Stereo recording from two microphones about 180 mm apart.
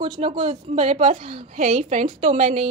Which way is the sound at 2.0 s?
30° right (ahead or behind).